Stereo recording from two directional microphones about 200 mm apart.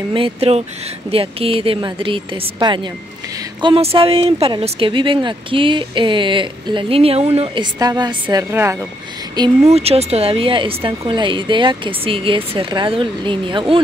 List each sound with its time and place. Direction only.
0.1 s a woman's voice: 30° right (ahead or behind)
7.8 s a woman's voice: 20° right (ahead or behind)
9.3 s a woman's voice: 25° right (ahead or behind)